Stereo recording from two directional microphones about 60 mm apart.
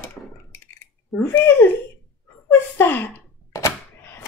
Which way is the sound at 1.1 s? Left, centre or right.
Left.